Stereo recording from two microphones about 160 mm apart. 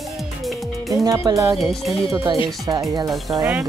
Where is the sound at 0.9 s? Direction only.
20° right (ahead or behind).